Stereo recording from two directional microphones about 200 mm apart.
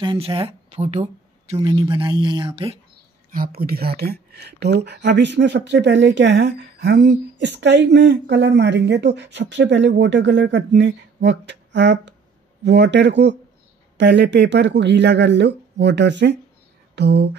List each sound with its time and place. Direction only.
0.0 s speech: 25° right (ahead or behind)
3.3 s speech: 45° right (ahead or behind)